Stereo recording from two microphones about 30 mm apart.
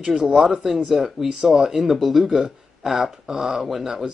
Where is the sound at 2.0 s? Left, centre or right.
Centre.